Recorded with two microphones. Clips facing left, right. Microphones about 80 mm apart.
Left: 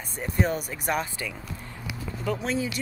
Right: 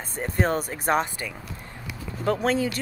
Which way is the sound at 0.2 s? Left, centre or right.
Right.